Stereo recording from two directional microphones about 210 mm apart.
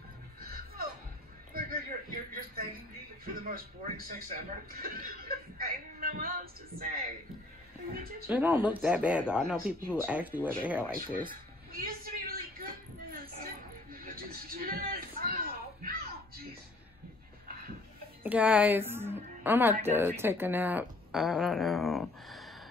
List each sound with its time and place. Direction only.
0.4 s music: 45° right (ahead or behind)
1.5 s a sound: 45° right (ahead or behind)
3.4 s a man's voice: 45° right (ahead or behind)
8.3 s speech: 10° right (ahead or behind)
11.0 s a sound: 40° right (ahead or behind)
18.2 s a woman's voice: 5° right (ahead or behind)